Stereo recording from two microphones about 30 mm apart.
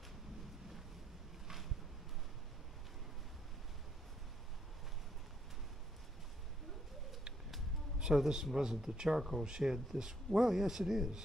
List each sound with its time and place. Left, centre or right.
8.0 s a man's voice: centre